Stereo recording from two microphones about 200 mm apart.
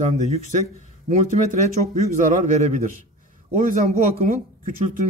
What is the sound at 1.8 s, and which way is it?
Speech, 40° right (ahead or behind).